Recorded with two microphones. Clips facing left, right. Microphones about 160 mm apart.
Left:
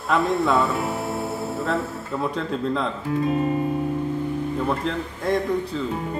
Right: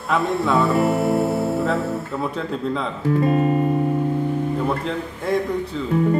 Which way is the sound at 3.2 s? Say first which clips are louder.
Right 3 dB; 60° right (ahead or behind).